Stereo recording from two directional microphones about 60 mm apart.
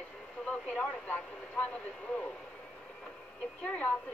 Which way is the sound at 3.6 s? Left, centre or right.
Left.